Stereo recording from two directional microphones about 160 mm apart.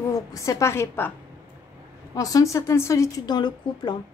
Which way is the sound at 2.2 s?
20° left (ahead or behind).